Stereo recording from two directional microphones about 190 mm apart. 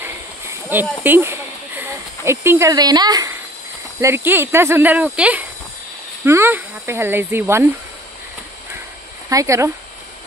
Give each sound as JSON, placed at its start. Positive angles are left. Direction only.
{"t": 0.0, "sound": "a sound", "side_deg": -10}
{"t": 4.0, "sound": "speech", "side_deg": -10}
{"t": 9.3, "sound": "speech", "side_deg": -15}